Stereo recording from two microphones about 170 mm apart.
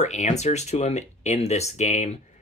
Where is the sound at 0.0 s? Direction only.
40° left (ahead or behind).